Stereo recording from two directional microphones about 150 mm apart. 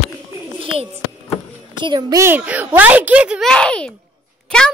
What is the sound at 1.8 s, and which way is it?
A child's voice, 30° right (ahead or behind).